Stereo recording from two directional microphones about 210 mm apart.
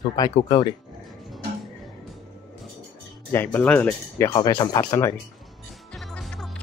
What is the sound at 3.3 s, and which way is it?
Speech, 10° left (ahead or behind).